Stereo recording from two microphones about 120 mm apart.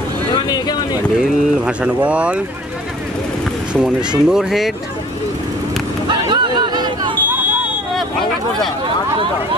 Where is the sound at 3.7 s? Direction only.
5° right (ahead or behind).